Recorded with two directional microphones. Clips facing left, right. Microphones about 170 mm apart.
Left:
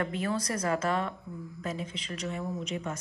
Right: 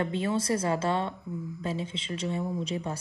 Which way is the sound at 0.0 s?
25° right (ahead or behind).